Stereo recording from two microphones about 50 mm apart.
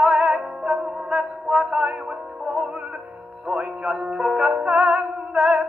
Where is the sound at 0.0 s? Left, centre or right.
Centre.